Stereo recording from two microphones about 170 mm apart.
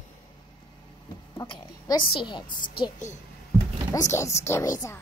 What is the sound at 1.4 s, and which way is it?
A woman's voice, 25° left (ahead or behind).